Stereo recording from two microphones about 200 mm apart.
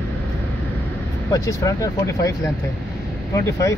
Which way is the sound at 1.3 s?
15° left (ahead or behind).